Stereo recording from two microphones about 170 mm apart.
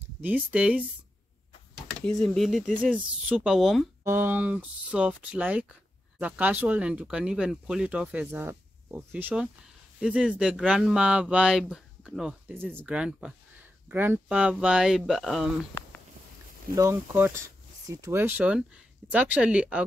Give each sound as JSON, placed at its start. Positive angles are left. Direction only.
{"t": 0.2, "sound": "speech", "side_deg": -10}
{"t": 2.0, "sound": "speech", "side_deg": 5}
{"t": 4.0, "sound": "speech", "side_deg": -10}
{"t": 16.7, "sound": "speech", "side_deg": -15}